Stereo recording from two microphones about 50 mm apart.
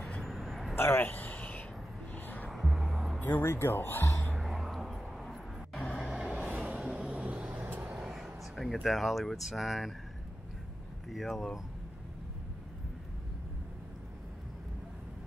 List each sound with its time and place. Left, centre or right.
0.2 s a sound: centre
0.7 s a sound: left
2.1 s music: left
2.5 s music: centre
3.2 s music: left
3.4 s speech: left
4.4 s a sound: centre
5.9 s vehicle: centre
6.3 s vehicle: right
6.6 s vehicle: centre
7.5 s vehicle: right
8.1 s a sound: centre
8.8 s speech: centre
11.1 s speech: centre